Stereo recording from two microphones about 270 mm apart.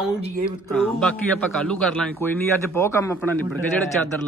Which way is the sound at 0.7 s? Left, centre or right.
Centre.